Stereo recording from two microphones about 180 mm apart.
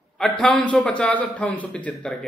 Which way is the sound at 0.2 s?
5° left (ahead or behind).